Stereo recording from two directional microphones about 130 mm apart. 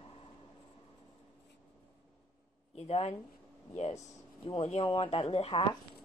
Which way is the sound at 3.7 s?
60° left (ahead or behind).